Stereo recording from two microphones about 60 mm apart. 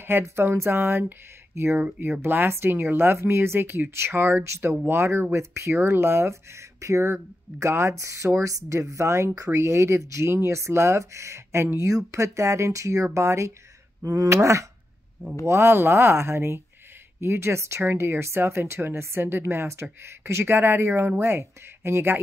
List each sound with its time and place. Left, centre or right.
0.2 s speech: right
14.0 s speech: right
14.3 s a sound: right
15.4 s speech: right